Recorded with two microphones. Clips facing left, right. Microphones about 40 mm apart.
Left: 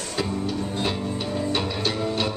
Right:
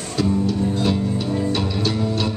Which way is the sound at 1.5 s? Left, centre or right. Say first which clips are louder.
Right 3 dB; centre.